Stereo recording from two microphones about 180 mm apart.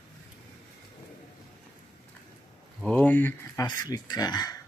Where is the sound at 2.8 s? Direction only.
5° left (ahead or behind).